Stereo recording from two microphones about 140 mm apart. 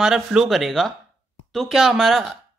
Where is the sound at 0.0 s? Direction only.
5° right (ahead or behind).